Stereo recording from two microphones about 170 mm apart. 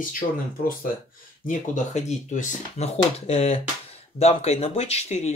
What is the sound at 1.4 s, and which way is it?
Speech, 45° left (ahead or behind).